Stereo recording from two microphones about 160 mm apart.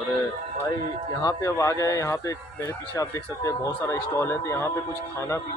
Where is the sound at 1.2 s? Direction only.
20° left (ahead or behind).